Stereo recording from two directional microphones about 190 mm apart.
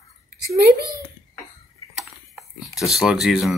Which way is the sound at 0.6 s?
55° right (ahead or behind).